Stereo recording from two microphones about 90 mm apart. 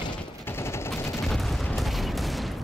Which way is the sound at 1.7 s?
Centre (ahead or behind).